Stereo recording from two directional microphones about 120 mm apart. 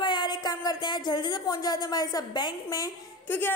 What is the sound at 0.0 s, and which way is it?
Speech, 35° left (ahead or behind).